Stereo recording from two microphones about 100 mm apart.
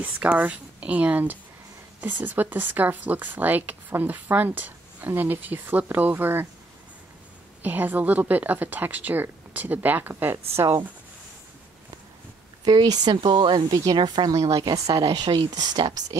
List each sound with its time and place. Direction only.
0.0 s speech: 15° right (ahead or behind)
7.6 s speech: 20° right (ahead or behind)
12.6 s speech: 45° right (ahead or behind)
14.3 s speech: 35° right (ahead or behind)
14.6 s speech: 45° right (ahead or behind)